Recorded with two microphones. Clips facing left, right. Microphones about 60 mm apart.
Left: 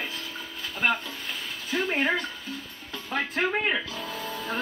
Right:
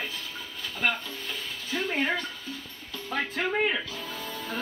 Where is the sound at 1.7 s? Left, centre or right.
Left.